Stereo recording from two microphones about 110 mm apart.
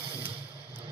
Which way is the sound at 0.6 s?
55° right (ahead or behind).